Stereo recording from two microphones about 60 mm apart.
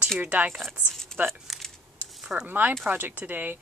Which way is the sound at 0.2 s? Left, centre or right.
Right.